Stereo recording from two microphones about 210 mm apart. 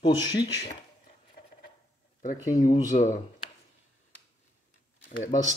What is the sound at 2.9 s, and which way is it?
Speech, 35° left (ahead or behind).